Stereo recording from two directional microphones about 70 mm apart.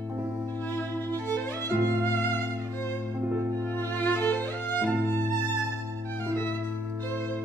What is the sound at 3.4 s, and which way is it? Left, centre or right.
Music, right.